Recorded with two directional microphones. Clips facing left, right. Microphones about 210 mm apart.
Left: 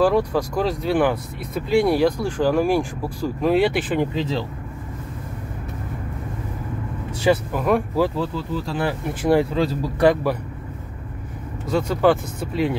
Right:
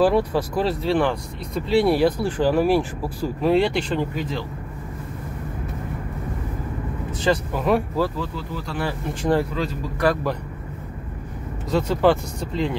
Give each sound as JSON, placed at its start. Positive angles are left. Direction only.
{"t": 0.0, "sound": "speech", "side_deg": -10}
{"t": 1.9, "sound": "speech", "side_deg": -5}
{"t": 4.0, "sound": "speech", "side_deg": 25}
{"t": 7.2, "sound": "speech", "side_deg": 5}
{"t": 8.2, "sound": "speech", "side_deg": 25}
{"t": 9.2, "sound": "speech", "side_deg": 10}
{"t": 9.5, "sound": "speech", "side_deg": 30}
{"t": 11.7, "sound": "speech", "side_deg": 5}